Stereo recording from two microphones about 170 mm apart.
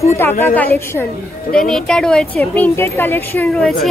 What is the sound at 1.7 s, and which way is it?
Speech, 5° left (ahead or behind).